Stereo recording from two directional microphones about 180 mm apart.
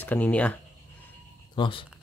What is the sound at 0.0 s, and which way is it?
Speech, 10° left (ahead or behind).